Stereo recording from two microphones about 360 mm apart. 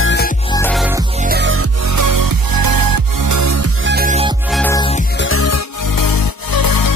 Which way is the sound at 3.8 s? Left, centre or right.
Right.